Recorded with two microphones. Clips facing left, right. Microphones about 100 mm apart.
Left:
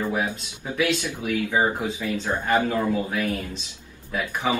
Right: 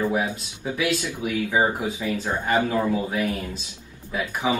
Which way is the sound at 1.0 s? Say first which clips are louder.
Even; 20° right (ahead or behind).